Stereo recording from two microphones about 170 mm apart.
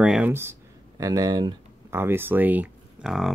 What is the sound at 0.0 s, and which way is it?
Speech, 5° right (ahead or behind).